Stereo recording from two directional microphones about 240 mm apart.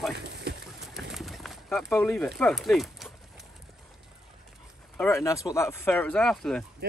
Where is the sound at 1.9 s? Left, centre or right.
Centre.